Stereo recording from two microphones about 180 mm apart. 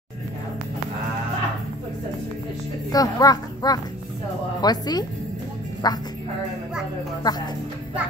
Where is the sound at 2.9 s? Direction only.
20° left (ahead or behind).